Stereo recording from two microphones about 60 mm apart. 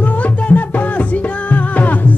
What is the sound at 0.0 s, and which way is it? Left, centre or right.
Music, left.